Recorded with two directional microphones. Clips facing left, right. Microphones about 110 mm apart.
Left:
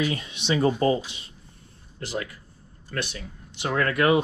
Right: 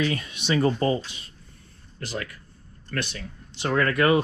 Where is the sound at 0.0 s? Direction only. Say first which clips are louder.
Right 1 dB; 20° left (ahead or behind).